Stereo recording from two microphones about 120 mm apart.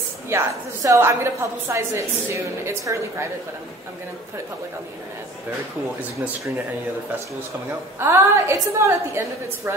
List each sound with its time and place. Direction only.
0.3 s a woman's voice: 20° right (ahead or behind)
8.0 s a woman's voice: 25° right (ahead or behind)